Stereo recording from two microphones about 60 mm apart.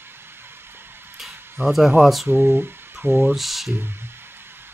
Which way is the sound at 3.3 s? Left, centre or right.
Centre.